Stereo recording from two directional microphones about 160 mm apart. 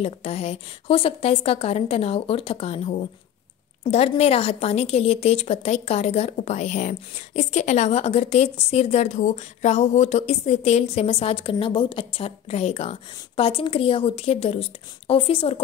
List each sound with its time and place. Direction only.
0.0 s a woman's voice: 40° left (ahead or behind)
4.2 s a woman's voice: 40° left (ahead or behind)